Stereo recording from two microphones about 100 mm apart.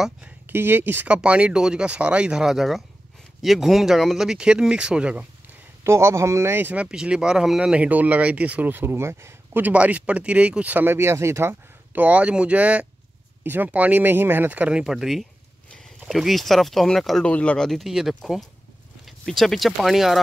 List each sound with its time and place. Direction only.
0.5 s speech: 20° right (ahead or behind)
5.9 s speech: 25° right (ahead or behind); by 20.2 s centre (ahead or behind)